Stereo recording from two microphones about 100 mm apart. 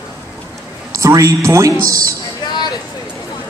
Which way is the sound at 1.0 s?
30° right (ahead or behind).